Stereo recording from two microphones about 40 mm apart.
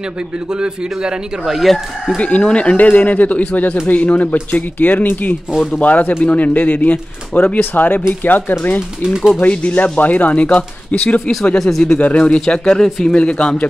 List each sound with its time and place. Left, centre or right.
1.4 s speech: centre
2.1 s speech: left
9.0 s speech: centre
9.4 s speech: left
11.5 s speech: centre
12.0 s speech: left
12.4 s speech: centre
13.2 s speech: left